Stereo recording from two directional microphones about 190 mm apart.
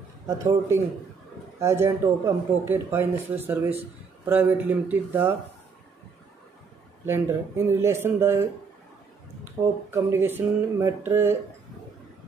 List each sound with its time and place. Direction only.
0.4 s speech: 15° right (ahead or behind)
7.1 s speech: 10° right (ahead or behind)